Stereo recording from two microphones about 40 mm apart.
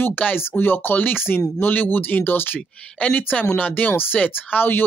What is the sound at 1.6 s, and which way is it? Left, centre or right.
Speech, left.